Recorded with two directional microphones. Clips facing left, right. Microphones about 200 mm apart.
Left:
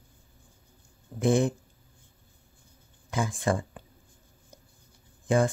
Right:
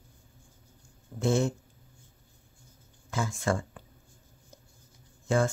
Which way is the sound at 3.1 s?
15° left (ahead or behind).